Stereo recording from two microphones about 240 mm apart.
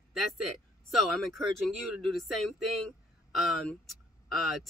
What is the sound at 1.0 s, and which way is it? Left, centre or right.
Speech, centre.